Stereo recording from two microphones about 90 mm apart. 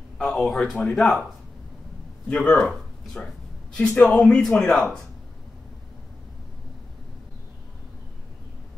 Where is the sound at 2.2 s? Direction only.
15° left (ahead or behind).